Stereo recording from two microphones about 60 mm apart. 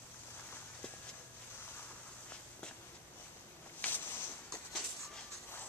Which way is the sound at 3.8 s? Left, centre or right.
Left.